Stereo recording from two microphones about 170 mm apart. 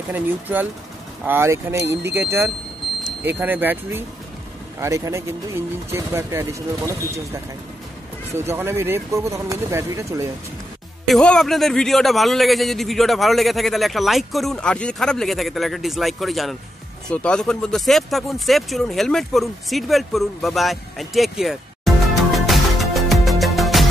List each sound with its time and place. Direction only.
0.1 s speech: 10° right (ahead or behind)
8.5 s speech: 15° right (ahead or behind)
11.1 s a man's voice: 5° left (ahead or behind)